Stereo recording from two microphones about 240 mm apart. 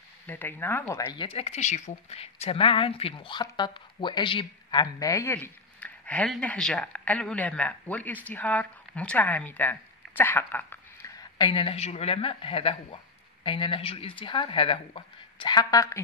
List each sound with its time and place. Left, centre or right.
0.3 s speech: centre